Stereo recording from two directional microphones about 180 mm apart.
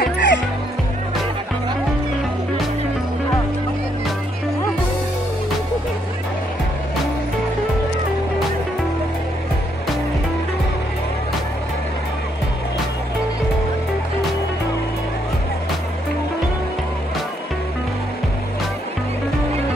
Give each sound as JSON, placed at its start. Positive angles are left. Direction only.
{"t": 0.0, "sound": "music", "side_deg": 80}